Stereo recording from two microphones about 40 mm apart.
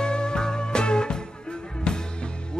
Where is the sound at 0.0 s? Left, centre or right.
Left.